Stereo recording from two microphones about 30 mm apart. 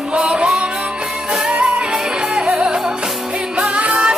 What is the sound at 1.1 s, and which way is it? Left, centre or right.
Music, centre.